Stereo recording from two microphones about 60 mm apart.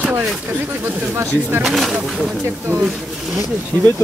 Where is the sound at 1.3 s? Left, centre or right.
Right.